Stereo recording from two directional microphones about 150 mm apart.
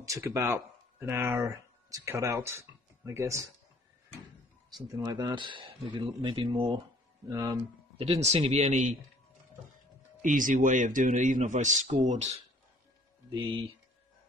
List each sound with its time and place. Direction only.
0.0 s speech: 20° right (ahead or behind)
4.8 s speech: 25° right (ahead or behind)
7.2 s speech: 20° right (ahead or behind)
8.0 s speech: 45° right (ahead or behind)
10.2 s a man's voice: 60° right (ahead or behind)